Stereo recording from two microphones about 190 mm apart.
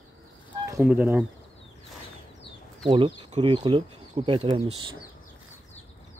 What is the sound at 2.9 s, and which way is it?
Speech, 25° right (ahead or behind).